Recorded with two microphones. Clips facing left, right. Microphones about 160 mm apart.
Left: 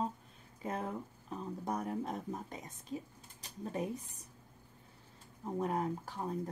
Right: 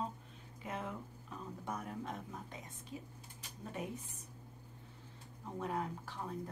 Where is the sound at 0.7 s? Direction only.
40° left (ahead or behind).